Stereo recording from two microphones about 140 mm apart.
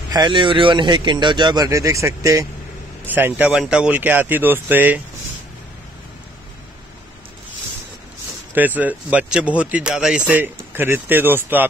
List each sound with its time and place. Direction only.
0.1 s speech: 30° right (ahead or behind); by 5.0 s 15° right (ahead or behind)
8.5 s speech: 10° right (ahead or behind)